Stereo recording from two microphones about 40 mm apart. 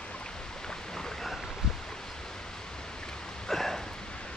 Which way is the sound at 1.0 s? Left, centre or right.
Centre.